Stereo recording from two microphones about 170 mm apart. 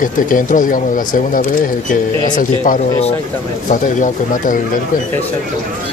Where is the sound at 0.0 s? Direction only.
50° left (ahead or behind).